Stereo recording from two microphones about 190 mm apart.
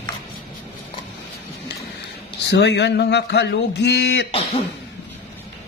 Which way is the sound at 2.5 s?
65° left (ahead or behind).